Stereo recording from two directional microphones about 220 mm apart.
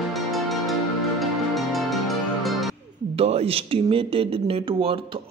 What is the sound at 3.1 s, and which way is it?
A man's voice, 25° right (ahead or behind).